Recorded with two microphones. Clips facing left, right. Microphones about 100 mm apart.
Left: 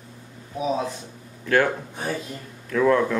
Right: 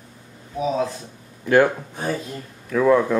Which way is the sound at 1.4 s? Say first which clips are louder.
Right 4 dB; 15° right (ahead or behind).